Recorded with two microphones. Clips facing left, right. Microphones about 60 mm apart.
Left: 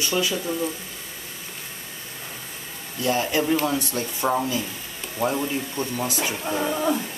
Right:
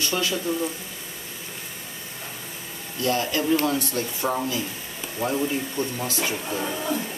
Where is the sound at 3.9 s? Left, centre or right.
Left.